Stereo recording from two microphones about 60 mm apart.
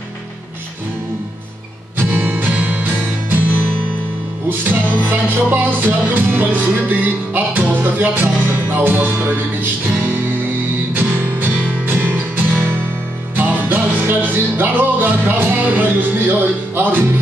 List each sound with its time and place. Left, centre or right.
2.0 s music: right
13.4 s music: right